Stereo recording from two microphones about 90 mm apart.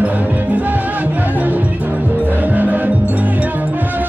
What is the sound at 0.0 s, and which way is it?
Music, 20° right (ahead or behind).